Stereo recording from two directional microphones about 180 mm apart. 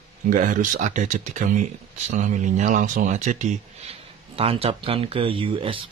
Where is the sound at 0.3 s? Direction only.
45° right (ahead or behind).